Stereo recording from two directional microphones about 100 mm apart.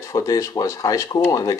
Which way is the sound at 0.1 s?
35° left (ahead or behind).